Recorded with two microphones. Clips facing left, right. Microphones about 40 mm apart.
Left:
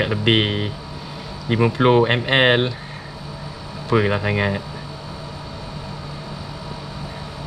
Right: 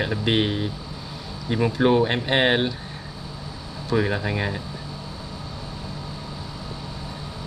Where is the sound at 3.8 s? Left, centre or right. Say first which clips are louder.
Left 4 dB; left.